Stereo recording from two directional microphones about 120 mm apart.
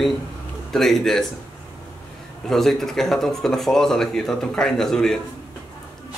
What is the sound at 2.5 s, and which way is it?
Speech, 5° left (ahead or behind).